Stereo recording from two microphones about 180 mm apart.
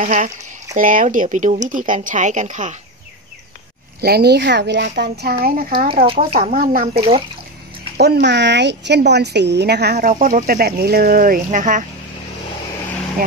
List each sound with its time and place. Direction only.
0.0 s speech: 45° right (ahead or behind)
4.0 s a woman's voice: 60° right (ahead or behind)
8.0 s a woman's voice: 70° right (ahead or behind); by 11.8 s 45° right (ahead or behind)